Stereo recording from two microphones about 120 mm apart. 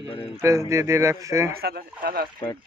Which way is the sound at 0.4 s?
25° right (ahead or behind).